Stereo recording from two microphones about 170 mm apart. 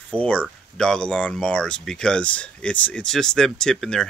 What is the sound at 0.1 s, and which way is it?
Speech, 10° left (ahead or behind).